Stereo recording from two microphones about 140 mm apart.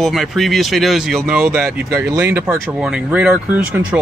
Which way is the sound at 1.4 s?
15° right (ahead or behind).